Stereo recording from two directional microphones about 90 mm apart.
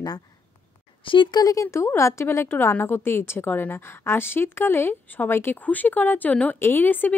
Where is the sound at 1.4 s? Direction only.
40° left (ahead or behind).